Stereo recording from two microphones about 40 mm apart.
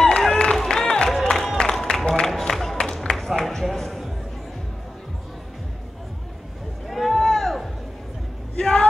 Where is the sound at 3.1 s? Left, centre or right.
Centre.